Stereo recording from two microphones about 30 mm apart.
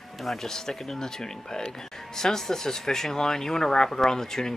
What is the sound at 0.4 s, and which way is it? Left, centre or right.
Speech, centre.